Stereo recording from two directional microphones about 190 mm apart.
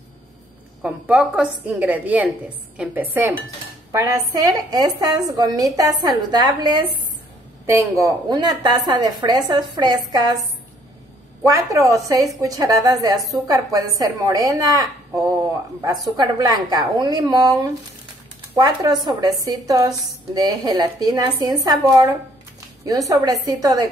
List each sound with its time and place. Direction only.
0.8 s a woman's voice: 5° right (ahead or behind)
11.4 s a woman's voice: 15° right (ahead or behind)